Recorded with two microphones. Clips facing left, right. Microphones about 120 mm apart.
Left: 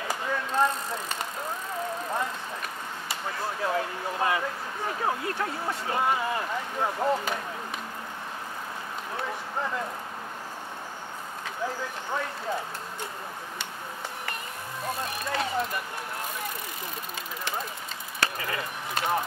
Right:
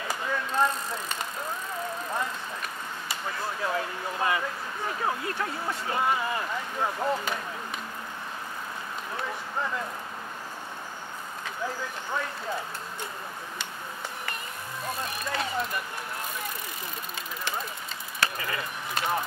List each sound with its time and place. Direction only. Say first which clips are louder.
0.0 s a sound: left 1 dB; 40° left (ahead or behind)
2.0 s speech: left 1 dB; 35° left (ahead or behind)
9.1 s a sound: left 1 dB; 35° left (ahead or behind)
11.4 s speech: left 1 dB; 35° left (ahead or behind)
15.1 s speech: left 2 dB; 45° left (ahead or behind)
18.2 s speech: even; 45° left (ahead or behind)